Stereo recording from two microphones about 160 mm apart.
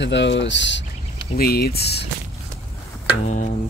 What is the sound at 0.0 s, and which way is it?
Speech, 90° left.